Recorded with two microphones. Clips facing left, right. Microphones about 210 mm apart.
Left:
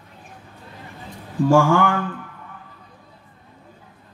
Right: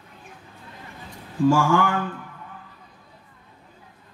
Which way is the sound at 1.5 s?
55° left (ahead or behind).